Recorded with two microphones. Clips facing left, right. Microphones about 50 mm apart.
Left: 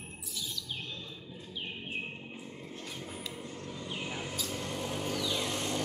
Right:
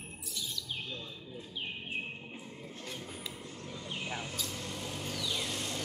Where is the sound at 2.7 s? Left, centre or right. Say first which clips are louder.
Left 1 dB; centre.